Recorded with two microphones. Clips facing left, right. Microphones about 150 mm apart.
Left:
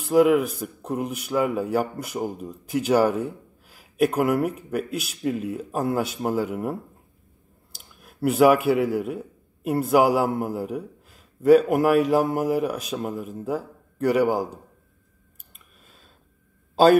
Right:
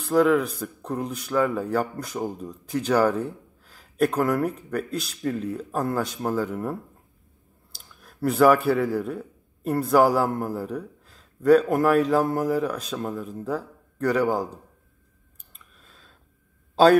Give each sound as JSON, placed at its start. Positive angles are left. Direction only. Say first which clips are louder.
{"t": 0.0, "sound": "speech", "louder": "left 2 dB", "side_deg": 5}
{"t": 8.0, "sound": "speech", "louder": "left 1 dB", "side_deg": 5}
{"t": 8.9, "sound": "a sound", "louder": "left 1 dB", "side_deg": 0}
{"t": 9.9, "sound": "speech", "louder": "even", "side_deg": 15}
{"t": 10.7, "sound": "a man's voice", "louder": "left 1 dB", "side_deg": 5}